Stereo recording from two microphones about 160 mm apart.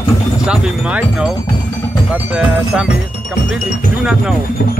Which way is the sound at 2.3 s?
5° right (ahead or behind).